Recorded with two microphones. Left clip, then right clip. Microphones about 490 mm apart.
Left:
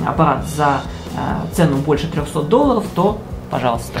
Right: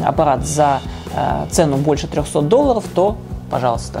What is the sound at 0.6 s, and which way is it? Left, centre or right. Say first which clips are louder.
Speech: right 1 dB; right.